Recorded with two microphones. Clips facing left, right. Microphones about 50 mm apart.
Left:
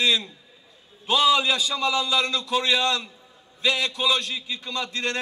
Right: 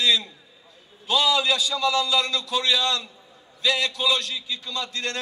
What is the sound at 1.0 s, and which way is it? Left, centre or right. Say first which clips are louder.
A man's voice: left 2 dB; left.